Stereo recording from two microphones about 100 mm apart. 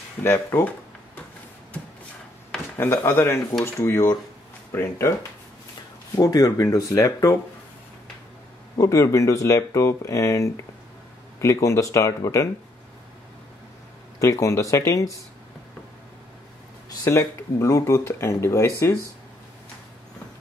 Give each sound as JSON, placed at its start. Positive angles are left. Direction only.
{"t": 0.2, "sound": "speech", "side_deg": 25}
{"t": 2.5, "sound": "a sound", "side_deg": 5}
{"t": 3.1, "sound": "speech", "side_deg": 25}
{"t": 6.1, "sound": "speech", "side_deg": 40}
{"t": 8.7, "sound": "speech", "side_deg": 30}
{"t": 14.2, "sound": "speech", "side_deg": 30}
{"t": 17.0, "sound": "speech", "side_deg": 25}